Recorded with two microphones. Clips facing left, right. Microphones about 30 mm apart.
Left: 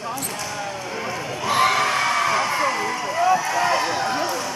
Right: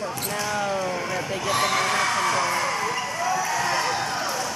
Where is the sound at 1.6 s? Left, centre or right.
Centre.